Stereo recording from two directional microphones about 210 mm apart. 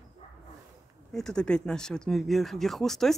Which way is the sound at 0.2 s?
30° left (ahead or behind).